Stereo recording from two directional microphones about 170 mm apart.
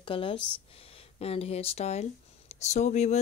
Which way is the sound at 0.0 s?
30° left (ahead or behind).